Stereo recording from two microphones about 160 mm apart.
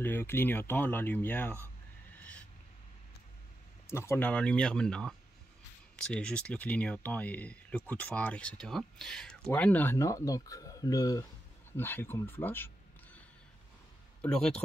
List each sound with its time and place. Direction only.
0.0 s speech: 15° left (ahead or behind)
3.8 s speech: 15° left (ahead or behind)
14.2 s speech: 5° left (ahead or behind)